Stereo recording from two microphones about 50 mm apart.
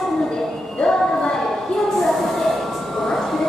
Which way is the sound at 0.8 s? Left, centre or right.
Centre.